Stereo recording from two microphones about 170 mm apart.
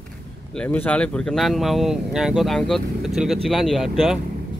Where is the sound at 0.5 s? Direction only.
5° left (ahead or behind).